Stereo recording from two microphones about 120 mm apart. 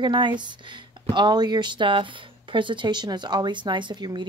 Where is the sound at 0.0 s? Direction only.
40° right (ahead or behind).